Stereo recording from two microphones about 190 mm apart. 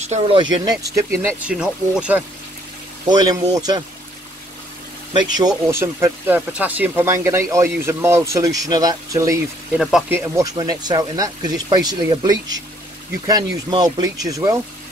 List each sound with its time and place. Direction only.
0.0 s speech: 35° right (ahead or behind)
0.8 s speech: 15° right (ahead or behind)
3.1 s speech: 20° right (ahead or behind)
5.1 s speech: 20° right (ahead or behind)
9.8 s speech: centre (ahead or behind); by 14.6 s 20° right (ahead or behind)